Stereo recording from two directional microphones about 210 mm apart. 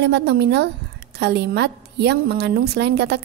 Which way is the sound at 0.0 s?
55° right (ahead or behind).